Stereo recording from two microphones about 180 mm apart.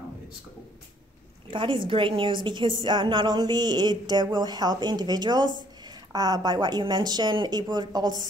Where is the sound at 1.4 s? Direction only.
30° right (ahead or behind).